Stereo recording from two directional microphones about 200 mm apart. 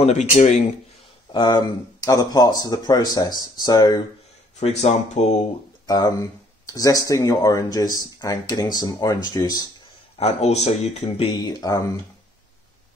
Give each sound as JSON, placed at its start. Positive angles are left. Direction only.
{"t": 0.0, "sound": "speech", "side_deg": 35}
{"t": 1.3, "sound": "speech", "side_deg": 20}
{"t": 4.6, "sound": "speech", "side_deg": 35}
{"t": 5.9, "sound": "speech", "side_deg": 20}
{"t": 10.1, "sound": "speech", "side_deg": 30}
{"t": 11.1, "sound": "speech", "side_deg": 20}